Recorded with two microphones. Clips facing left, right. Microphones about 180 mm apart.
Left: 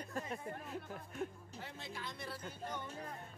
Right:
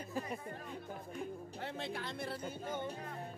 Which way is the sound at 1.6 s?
60° right (ahead or behind).